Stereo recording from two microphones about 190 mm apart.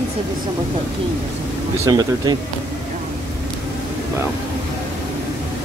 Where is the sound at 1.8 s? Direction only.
20° right (ahead or behind).